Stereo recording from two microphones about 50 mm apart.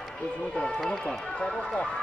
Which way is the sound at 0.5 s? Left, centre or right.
Left.